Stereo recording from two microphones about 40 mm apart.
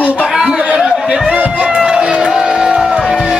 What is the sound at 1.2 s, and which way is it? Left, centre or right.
Speech, right.